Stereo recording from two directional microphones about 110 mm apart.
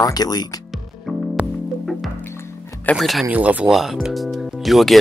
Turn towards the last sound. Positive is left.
turn(degrees=0)  # may be behind; listen again after turning